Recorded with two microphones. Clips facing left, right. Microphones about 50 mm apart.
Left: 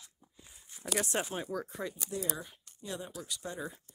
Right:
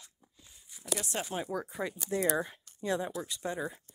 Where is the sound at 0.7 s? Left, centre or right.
Left.